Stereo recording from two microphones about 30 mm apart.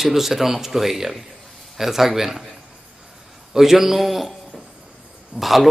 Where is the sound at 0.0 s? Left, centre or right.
Centre.